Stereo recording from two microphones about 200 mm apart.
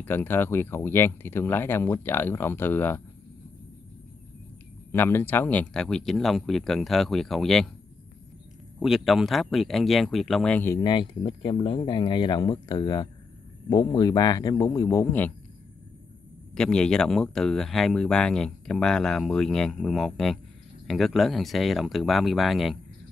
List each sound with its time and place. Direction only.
0.0 s speech: 10° left (ahead or behind)
4.9 s speech: 10° left (ahead or behind)
8.7 s speech: centre (ahead or behind)
16.5 s speech: 5° left (ahead or behind)